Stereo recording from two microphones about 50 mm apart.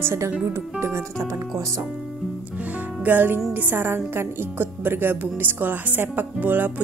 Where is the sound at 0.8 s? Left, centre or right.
Right.